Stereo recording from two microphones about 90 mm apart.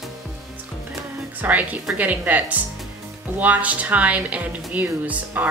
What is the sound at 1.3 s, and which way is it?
A woman's voice, 15° right (ahead or behind).